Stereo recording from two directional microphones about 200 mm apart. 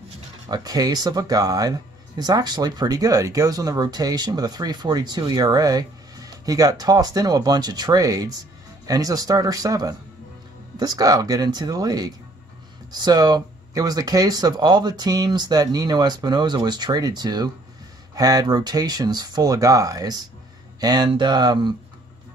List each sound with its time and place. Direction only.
0.5 s speech: 20° right (ahead or behind)